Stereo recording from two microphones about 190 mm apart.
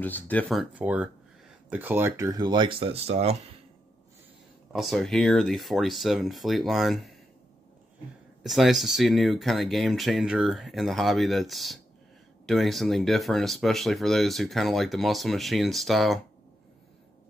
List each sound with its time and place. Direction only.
0.0 s speech: 10° left (ahead or behind); by 3.3 s 35° right (ahead or behind)
4.7 s speech: centre (ahead or behind)
8.4 s speech: centre (ahead or behind)